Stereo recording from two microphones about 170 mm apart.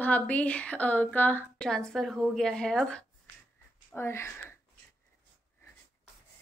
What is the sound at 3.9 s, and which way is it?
Speech, 15° left (ahead or behind).